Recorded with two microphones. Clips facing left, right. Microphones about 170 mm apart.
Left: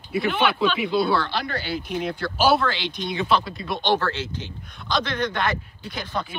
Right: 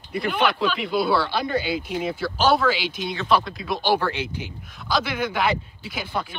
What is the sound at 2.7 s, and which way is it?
A man's voice, 5° right (ahead or behind).